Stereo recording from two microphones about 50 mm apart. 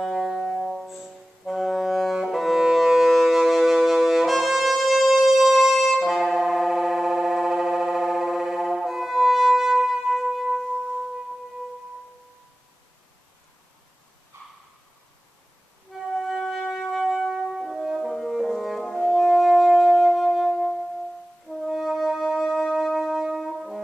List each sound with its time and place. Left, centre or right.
0.0 s music: centre
14.3 s a sound: right
15.9 s music: centre
17.5 s french horn: centre
21.5 s music: centre
22.4 s music: centre
22.7 s music: centre
23.2 s brass instrument: centre